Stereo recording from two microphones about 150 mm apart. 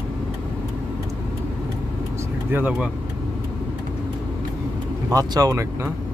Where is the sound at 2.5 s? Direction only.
10° right (ahead or behind).